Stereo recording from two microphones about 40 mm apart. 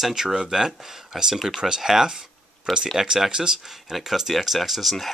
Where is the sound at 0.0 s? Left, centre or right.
Centre.